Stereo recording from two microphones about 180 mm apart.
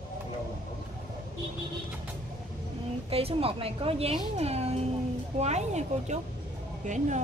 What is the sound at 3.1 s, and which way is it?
Speech, 30° right (ahead or behind).